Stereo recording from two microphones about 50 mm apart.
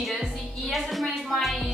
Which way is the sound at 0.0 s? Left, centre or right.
Centre.